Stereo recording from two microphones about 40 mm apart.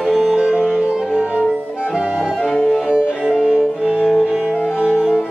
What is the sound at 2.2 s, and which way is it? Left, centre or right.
Accordion, centre.